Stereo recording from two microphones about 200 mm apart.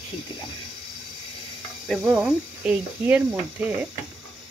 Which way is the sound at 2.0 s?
5° right (ahead or behind).